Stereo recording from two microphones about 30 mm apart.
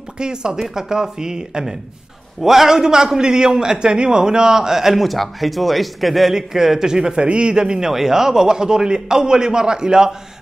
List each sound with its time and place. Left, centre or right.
0.2 s a man's voice: right
2.4 s a man's voice: centre
5.0 s speech: centre
6.3 s a man's voice: centre; by 7.6 s right
7.6 s a man's voice: centre